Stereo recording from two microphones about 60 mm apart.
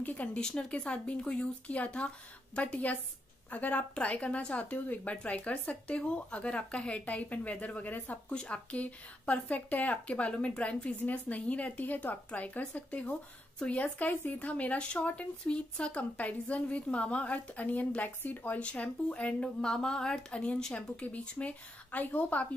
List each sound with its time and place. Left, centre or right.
0.0 s speech: left
19.6 s speech: centre